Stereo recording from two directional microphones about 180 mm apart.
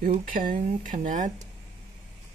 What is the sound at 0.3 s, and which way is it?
Speech, 50° right (ahead or behind).